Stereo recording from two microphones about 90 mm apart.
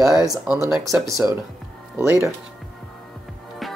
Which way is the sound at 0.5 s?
35° right (ahead or behind).